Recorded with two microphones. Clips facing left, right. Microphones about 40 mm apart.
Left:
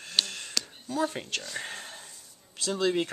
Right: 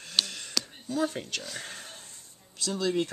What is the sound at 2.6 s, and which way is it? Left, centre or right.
Speech, left.